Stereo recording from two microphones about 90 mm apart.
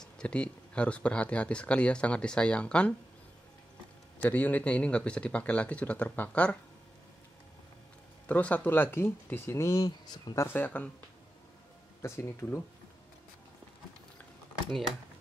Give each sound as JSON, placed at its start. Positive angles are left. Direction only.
{"t": 0.0, "sound": "speech", "side_deg": 10}
{"t": 4.2, "sound": "speech", "side_deg": 20}
{"t": 8.3, "sound": "speech", "side_deg": 15}
{"t": 10.3, "sound": "speech", "side_deg": 25}
{"t": 12.0, "sound": "speech", "side_deg": 25}